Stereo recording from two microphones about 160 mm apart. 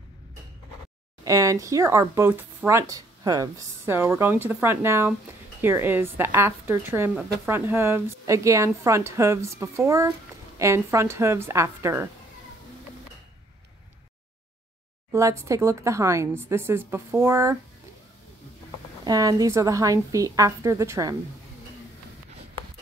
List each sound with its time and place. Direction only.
1.2 s a woman's voice: 20° right (ahead or behind)
15.1 s a woman's voice: 20° right (ahead or behind)
19.0 s speech: 25° right (ahead or behind)